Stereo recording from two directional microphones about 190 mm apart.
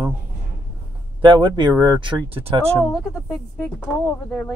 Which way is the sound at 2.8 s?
Centre (ahead or behind).